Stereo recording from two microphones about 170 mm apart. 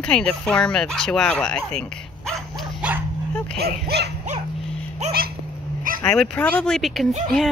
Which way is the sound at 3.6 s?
70° right (ahead or behind).